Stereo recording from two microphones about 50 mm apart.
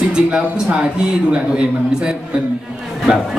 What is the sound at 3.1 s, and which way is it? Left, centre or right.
Speech, right.